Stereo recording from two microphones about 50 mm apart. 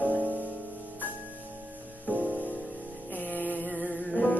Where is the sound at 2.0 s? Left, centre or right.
Right.